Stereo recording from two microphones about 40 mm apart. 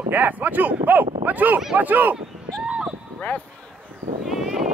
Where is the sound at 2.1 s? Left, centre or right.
Right.